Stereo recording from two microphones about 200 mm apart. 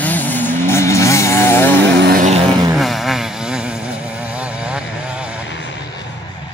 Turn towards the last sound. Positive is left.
turn(degrees=-5)  # may be behind; listen again after turning